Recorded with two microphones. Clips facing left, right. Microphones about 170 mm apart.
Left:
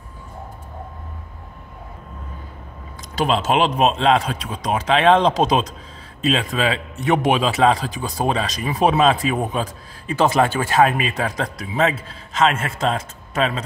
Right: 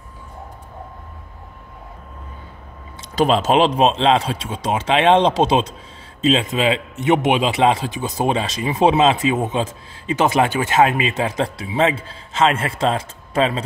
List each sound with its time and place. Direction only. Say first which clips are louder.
3.2 s a man's voice: right 3 dB; 40° right (ahead or behind)